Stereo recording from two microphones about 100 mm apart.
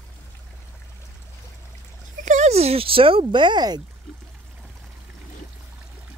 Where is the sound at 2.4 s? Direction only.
90° right; by 3.8 s 45° right (ahead or behind).